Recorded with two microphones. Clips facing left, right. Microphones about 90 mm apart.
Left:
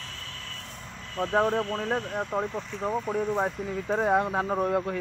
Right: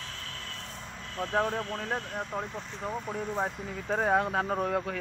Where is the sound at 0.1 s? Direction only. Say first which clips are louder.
Even; 15° right (ahead or behind).